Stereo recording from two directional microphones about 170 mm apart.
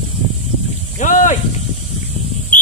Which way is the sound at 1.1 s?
50° left (ahead or behind).